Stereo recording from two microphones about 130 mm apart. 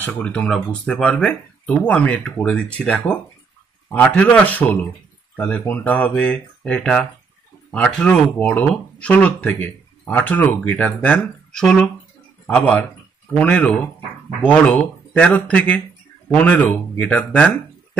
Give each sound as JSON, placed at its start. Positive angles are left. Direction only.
{"t": 0.0, "sound": "speech", "side_deg": 10}